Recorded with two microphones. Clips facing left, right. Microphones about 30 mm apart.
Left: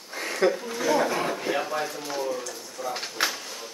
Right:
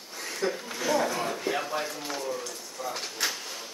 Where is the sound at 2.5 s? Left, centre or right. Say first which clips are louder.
Left 3 dB; centre.